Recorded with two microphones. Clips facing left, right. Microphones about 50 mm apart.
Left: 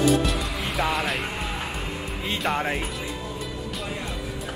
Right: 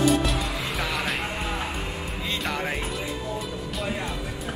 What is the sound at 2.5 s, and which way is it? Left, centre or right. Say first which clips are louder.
Music: left 5 dB; centre.